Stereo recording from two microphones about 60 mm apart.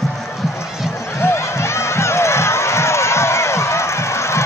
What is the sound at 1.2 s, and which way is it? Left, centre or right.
Crowd, left.